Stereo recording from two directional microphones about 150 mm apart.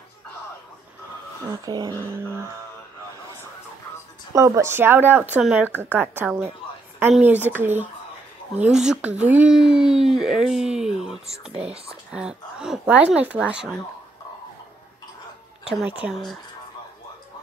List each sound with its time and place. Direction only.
1.5 s speech: 25° right (ahead or behind)
2.0 s speech: 15° right (ahead or behind)
4.3 s speech: 20° right (ahead or behind); by 13.7 s 5° right (ahead or behind)
15.6 s a woman's voice: 5° right (ahead or behind)